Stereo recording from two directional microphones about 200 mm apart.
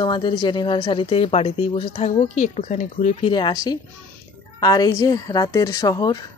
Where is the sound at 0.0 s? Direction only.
20° left (ahead or behind).